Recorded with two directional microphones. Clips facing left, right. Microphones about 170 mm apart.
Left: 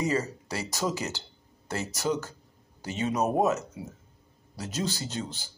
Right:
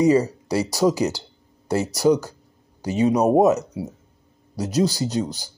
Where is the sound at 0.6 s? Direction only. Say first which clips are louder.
Right 11 dB; 35° right (ahead or behind).